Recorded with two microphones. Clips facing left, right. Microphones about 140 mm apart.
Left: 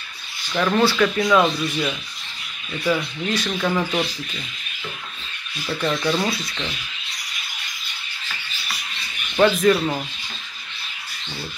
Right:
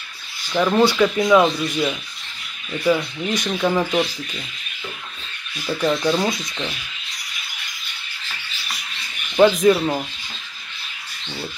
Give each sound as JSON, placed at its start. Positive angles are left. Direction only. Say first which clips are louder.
{"t": 0.5, "sound": "speech", "louder": "right 2 dB", "side_deg": -10}
{"t": 5.7, "sound": "speech", "louder": "right 3 dB", "side_deg": -10}
{"t": 9.4, "sound": "speech", "louder": "right 2 dB", "side_deg": -15}